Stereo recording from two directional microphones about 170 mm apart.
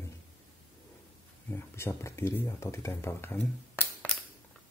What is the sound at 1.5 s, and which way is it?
Speech, 15° left (ahead or behind).